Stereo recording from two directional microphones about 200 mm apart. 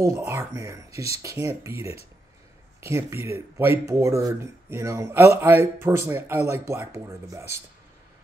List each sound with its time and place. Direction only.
0.0 s speech: 15° right (ahead or behind)
2.8 s speech: 10° right (ahead or behind)